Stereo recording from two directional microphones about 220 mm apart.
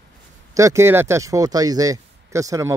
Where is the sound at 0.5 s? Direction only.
15° right (ahead or behind).